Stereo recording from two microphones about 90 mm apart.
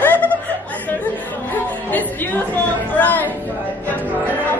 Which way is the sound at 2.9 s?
20° left (ahead or behind).